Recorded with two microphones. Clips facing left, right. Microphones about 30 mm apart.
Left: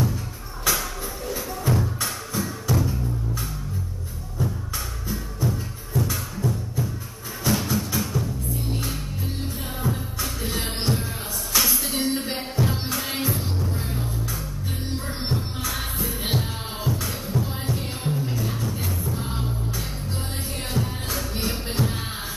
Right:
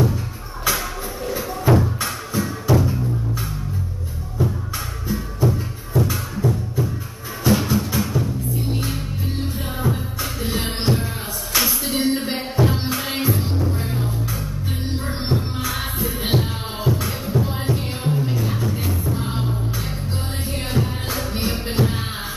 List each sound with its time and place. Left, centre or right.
0.7 s music: centre
4.4 s music: right
20.7 s music: centre